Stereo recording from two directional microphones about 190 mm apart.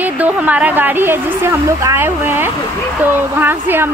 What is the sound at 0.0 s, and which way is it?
A woman's voice, 10° right (ahead or behind).